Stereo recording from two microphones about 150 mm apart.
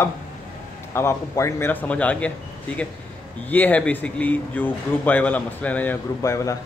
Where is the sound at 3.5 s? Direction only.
10° left (ahead or behind).